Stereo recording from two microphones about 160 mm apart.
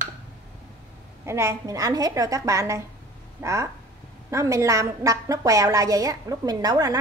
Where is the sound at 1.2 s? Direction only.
15° right (ahead or behind).